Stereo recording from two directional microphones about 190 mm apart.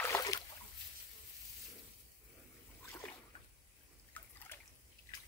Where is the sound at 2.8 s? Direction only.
15° left (ahead or behind).